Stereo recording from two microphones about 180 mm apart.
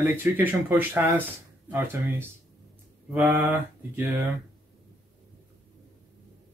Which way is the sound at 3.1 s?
10° right (ahead or behind).